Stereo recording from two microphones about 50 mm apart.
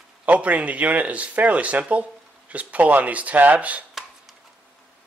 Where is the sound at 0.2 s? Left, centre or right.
Right.